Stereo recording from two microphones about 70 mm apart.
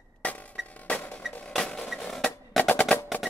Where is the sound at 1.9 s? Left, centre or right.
Centre.